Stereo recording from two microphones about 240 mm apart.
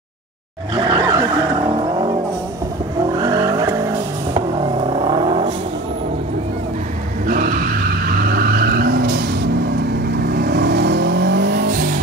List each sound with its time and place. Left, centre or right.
0.7 s vehicle: centre
3.2 s vehicle: centre
8.4 s vehicle: right